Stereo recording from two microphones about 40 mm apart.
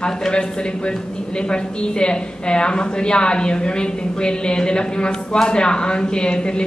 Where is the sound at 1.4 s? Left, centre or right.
Left.